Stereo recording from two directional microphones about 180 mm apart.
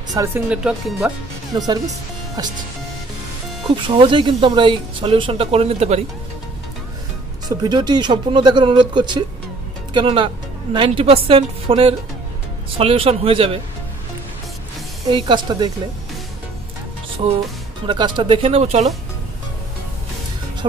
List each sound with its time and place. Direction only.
0.1 s speech: 15° right (ahead or behind)
0.5 s speech: centre (ahead or behind)
1.5 s speech: 20° right (ahead or behind)
3.6 s speech: 30° right (ahead or behind)
7.4 s speech: 25° right (ahead or behind)
15.0 s speech: 25° right (ahead or behind)
17.8 s speech: 25° right (ahead or behind)